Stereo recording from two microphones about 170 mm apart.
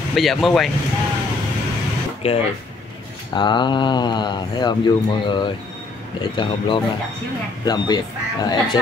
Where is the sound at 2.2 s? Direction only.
35° left (ahead or behind).